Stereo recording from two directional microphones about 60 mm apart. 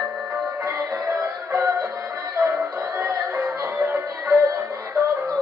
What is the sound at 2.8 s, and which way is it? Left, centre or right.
Music, right.